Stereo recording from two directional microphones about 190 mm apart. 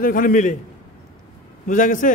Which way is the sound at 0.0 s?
45° left (ahead or behind).